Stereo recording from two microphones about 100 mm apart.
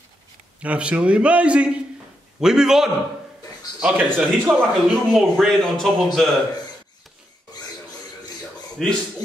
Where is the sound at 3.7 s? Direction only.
10° right (ahead or behind).